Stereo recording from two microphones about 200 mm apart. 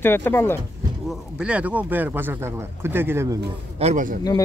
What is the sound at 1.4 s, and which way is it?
Speech, 5° right (ahead or behind).